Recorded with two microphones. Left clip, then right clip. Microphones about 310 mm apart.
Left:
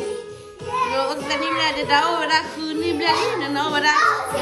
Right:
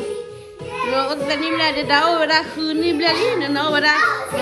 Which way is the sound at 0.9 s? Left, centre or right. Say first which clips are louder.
Right 2 dB; centre.